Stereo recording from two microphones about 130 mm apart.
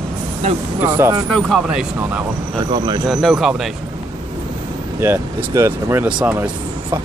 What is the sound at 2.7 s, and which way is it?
Speech, 30° right (ahead or behind).